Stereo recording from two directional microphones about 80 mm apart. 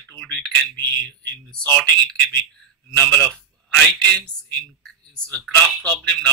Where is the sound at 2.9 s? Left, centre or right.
Centre.